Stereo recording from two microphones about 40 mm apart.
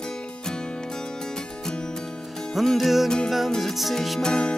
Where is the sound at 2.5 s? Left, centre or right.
Centre.